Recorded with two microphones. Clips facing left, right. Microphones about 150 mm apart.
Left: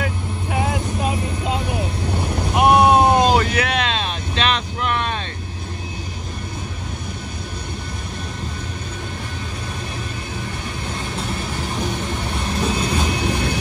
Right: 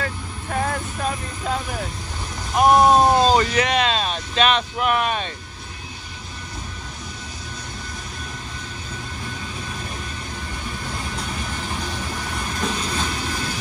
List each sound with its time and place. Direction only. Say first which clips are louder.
0.0 s vehicle: left 4 dB; 10° left (ahead or behind)
2.5 s a sound: left 1 dB; 10° left (ahead or behind)
3.3 s vehicle: even; 5° left (ahead or behind); by 5.3 s 10° right (ahead or behind)
12.6 s vehicle: left 4 dB; 15° left (ahead or behind)